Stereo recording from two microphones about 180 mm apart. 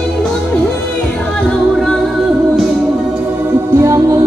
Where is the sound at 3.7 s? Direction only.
15° right (ahead or behind).